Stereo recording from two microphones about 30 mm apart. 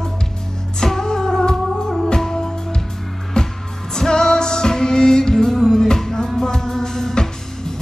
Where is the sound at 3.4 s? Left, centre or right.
Left.